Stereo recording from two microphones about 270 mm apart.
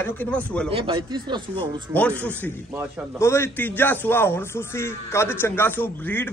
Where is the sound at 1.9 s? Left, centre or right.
Centre.